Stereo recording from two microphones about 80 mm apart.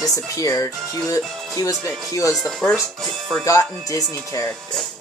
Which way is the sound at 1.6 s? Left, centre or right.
Left.